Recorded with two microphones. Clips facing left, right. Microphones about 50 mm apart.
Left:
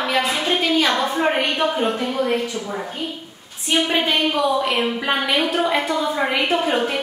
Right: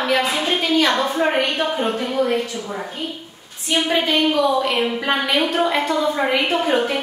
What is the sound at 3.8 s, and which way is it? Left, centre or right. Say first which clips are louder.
A woman's voice: right 4 dB; centre.